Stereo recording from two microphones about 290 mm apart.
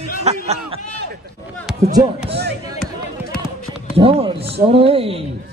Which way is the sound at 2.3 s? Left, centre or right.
Right.